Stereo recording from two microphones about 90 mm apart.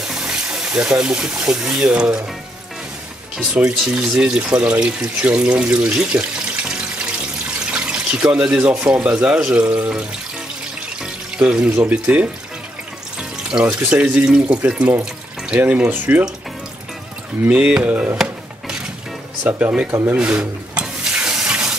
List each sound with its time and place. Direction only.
0.1 s speech: 5° right (ahead or behind)
3.5 s speech: 10° right (ahead or behind)
7.7 s speech: 10° right (ahead or behind)
11.3 s speech: 10° right (ahead or behind)
13.5 s speech: 15° right (ahead or behind)
17.5 s speech: 15° right (ahead or behind)
18.1 s drawer open or close: 5° right (ahead or behind)
19.4 s speech: 15° right (ahead or behind)
19.9 s speech: 30° right (ahead or behind)
20.2 s a sound: 10° right (ahead or behind)